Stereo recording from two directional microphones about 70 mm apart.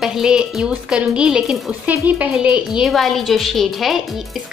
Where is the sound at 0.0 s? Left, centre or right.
Centre.